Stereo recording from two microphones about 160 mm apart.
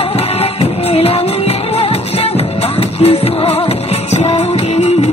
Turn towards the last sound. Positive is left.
turn(degrees=40)  # may be behind; listen again after turning